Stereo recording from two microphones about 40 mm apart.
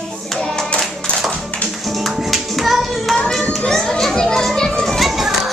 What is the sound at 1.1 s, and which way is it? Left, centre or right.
Music, left.